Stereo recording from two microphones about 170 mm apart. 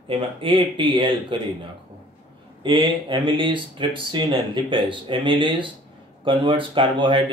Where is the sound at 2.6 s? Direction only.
30° right (ahead or behind).